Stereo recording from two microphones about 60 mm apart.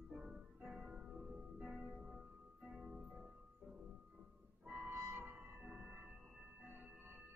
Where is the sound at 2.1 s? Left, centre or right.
Centre.